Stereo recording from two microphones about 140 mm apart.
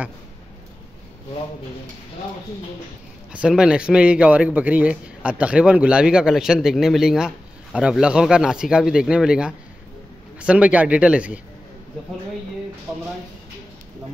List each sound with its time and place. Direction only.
3.3 s a man's voice: 5° right (ahead or behind)
12.9 s speech: 20° right (ahead or behind)